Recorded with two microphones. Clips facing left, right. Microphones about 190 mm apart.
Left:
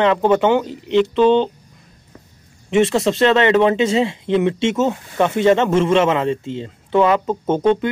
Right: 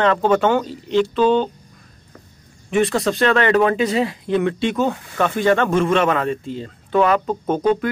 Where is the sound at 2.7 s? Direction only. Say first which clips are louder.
Left 3 dB; 25° left (ahead or behind).